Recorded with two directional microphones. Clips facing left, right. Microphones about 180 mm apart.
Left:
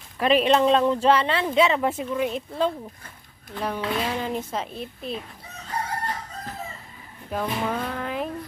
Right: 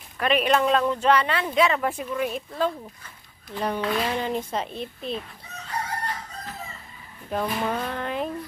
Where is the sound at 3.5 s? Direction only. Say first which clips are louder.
Right 1 dB; centre (ahead or behind).